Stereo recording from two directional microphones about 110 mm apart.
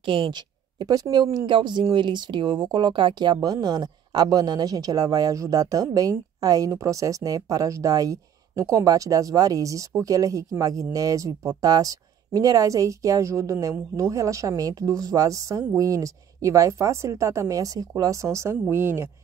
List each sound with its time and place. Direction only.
0.0 s a woman's voice: 50° right (ahead or behind); by 19.0 s 25° right (ahead or behind)